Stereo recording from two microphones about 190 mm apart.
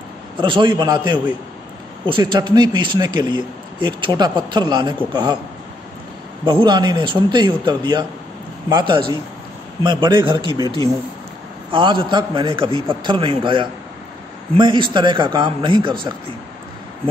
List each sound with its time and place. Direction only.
0.4 s speech: 25° right (ahead or behind)
6.4 s speech: 25° right (ahead or behind)
11.7 s speech: 25° right (ahead or behind)